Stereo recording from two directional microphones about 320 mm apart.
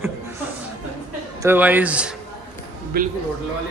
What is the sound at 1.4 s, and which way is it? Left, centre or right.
Speech, centre.